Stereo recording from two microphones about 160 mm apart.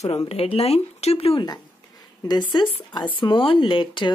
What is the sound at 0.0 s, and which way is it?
Speech, 40° left (ahead or behind).